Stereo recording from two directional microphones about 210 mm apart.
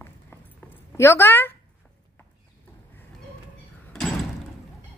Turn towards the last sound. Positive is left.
turn(degrees=0)  # may be behind; listen again after turning